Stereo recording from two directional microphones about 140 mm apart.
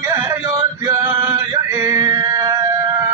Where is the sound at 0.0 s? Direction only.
20° right (ahead or behind).